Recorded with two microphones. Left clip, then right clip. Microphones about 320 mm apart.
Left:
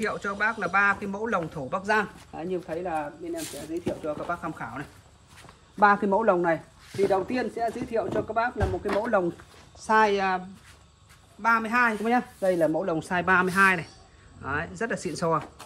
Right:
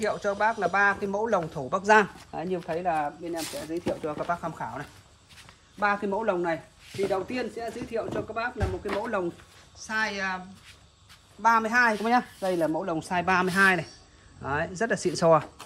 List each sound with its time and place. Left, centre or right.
0.0 s speech: centre
6.0 s speech: centre
11.4 s speech: centre
11.9 s speech: centre